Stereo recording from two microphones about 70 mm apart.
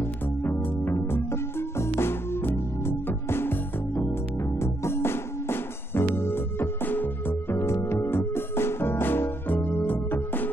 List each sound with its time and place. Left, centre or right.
0.4 s music: left
7.5 s music: left